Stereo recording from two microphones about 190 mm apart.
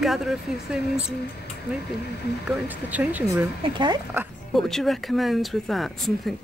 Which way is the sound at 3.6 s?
25° right (ahead or behind).